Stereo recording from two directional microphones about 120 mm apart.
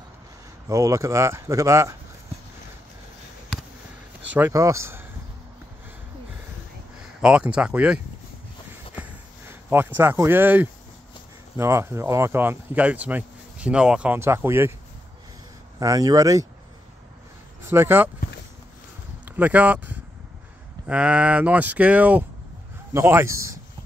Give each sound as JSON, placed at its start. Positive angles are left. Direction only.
{"t": 0.7, "sound": "speech", "side_deg": -25}
{"t": 4.5, "sound": "speech", "side_deg": -25}
{"t": 7.2, "sound": "speech", "side_deg": -10}
{"t": 9.5, "sound": "speech", "side_deg": -20}
{"t": 14.2, "sound": "speech", "side_deg": -20}
{"t": 15.8, "sound": "speech", "side_deg": -30}
{"t": 17.6, "sound": "speech", "side_deg": -20}
{"t": 19.2, "sound": "speech", "side_deg": -15}